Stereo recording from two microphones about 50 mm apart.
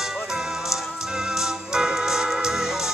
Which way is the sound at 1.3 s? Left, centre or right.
Centre.